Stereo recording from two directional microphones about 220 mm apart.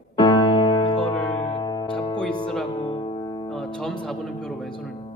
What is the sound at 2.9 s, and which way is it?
Music, 20° left (ahead or behind).